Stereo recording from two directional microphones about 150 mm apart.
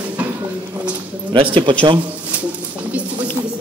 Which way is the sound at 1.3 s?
35° right (ahead or behind).